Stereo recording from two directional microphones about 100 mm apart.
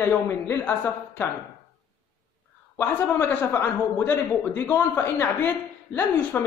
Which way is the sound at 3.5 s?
20° left (ahead or behind).